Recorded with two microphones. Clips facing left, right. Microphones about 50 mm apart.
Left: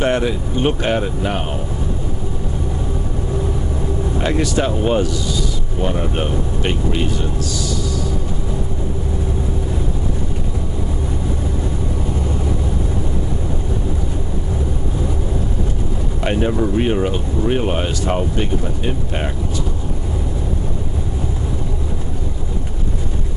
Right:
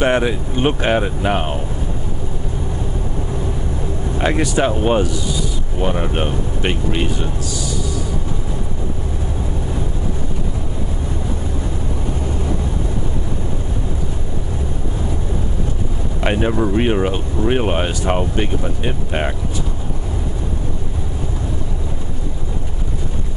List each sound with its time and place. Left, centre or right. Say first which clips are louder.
0.0 s speech: right 1 dB; right
4.2 s speech: right 2 dB; right
16.2 s speech: right 1 dB; centre